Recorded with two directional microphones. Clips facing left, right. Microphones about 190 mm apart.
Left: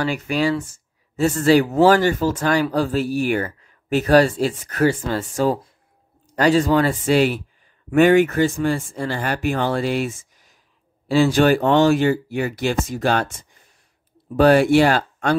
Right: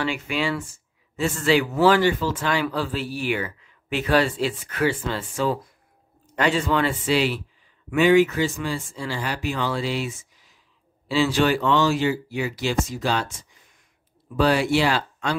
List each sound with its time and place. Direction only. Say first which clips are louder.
0.0 s speech: left 5 dB; 40° left (ahead or behind)
14.3 s speech: left 7 dB; 55° left (ahead or behind)